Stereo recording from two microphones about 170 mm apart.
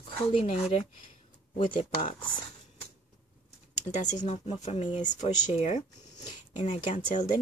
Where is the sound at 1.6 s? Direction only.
40° left (ahead or behind).